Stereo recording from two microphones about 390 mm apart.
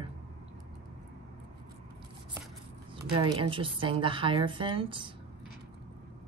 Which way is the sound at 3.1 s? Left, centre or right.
Centre.